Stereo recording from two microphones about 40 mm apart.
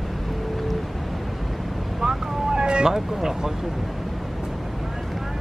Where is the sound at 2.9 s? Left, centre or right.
Centre.